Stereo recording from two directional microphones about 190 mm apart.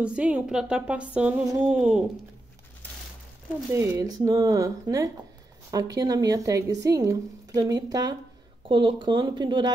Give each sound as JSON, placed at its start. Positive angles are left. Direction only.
{"t": 0.0, "sound": "speech", "side_deg": -5}
{"t": 1.7, "sound": "speech", "side_deg": -5}
{"t": 3.7, "sound": "speech", "side_deg": -15}